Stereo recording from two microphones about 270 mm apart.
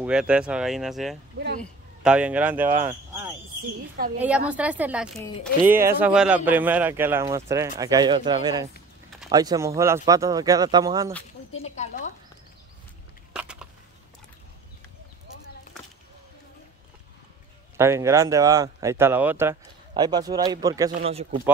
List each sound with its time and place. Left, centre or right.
0.0 s speech: centre
4.2 s speech: centre
11.5 s a woman's voice: left
13.3 s a sound: centre
17.7 s speech: centre